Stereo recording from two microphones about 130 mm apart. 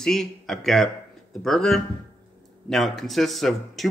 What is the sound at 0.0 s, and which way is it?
Speech, 5° left (ahead or behind).